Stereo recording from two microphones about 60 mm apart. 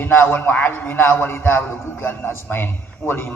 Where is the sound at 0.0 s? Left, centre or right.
Left.